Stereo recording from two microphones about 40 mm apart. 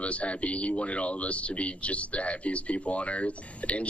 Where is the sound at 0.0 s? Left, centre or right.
Left.